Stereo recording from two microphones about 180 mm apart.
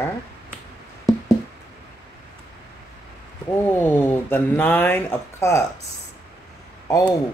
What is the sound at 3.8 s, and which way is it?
Speech, 10° left (ahead or behind).